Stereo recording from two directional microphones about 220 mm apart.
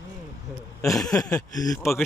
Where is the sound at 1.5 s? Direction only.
15° left (ahead or behind).